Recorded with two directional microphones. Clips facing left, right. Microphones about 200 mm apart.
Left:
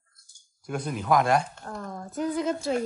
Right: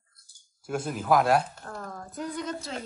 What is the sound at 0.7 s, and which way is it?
Speech, 5° right (ahead or behind).